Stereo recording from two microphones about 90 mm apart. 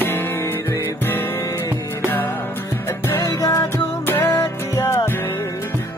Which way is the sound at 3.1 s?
35° left (ahead or behind).